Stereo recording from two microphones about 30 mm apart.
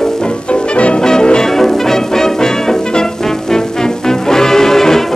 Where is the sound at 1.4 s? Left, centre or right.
Centre.